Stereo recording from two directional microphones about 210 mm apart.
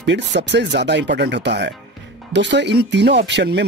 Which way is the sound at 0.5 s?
55° right (ahead or behind).